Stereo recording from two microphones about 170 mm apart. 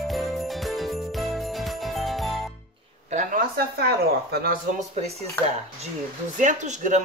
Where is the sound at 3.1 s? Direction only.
50° right (ahead or behind).